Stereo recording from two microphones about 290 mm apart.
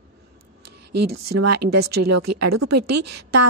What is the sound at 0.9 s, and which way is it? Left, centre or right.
A woman's voice, right.